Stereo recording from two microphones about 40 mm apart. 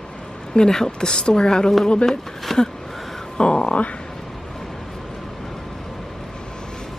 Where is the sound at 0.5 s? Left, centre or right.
Centre.